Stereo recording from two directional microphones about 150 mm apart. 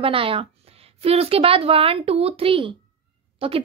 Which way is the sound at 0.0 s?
35° right (ahead or behind).